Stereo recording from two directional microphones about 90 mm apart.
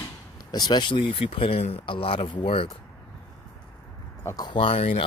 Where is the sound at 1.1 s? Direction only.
90° left.